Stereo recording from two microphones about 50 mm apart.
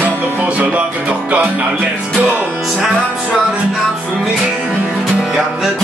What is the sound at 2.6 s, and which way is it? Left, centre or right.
Music, centre.